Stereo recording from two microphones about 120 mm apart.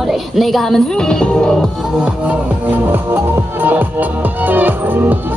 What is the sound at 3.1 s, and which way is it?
Music, 15° right (ahead or behind).